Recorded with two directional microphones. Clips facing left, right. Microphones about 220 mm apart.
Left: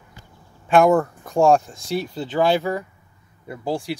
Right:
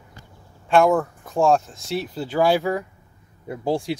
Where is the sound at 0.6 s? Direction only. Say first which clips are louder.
Left 2 dB; centre (ahead or behind).